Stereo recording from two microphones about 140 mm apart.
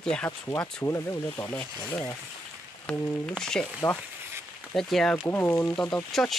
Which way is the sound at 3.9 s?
20° left (ahead or behind).